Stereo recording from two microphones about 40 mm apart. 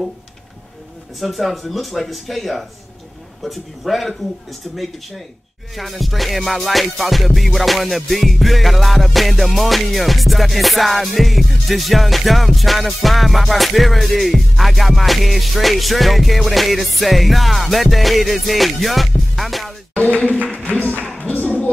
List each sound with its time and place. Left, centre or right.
1.2 s music: centre
19.9 s a sound: left
21.2 s clapping: left